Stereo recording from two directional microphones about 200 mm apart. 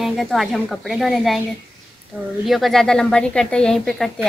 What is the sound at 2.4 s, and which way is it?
A child's voice, centre (ahead or behind).